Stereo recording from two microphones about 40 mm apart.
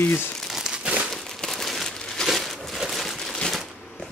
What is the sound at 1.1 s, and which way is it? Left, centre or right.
Crumpling, centre.